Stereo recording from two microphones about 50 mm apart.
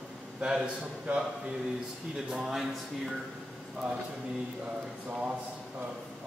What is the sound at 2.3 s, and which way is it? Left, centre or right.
Speech, centre.